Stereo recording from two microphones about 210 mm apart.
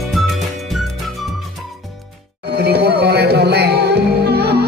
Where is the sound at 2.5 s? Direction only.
50° right (ahead or behind).